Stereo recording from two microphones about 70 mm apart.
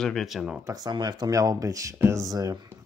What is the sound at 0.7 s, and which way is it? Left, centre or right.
Speech, right.